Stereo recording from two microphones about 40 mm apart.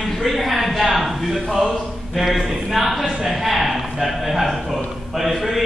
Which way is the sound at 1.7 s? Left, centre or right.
Centre.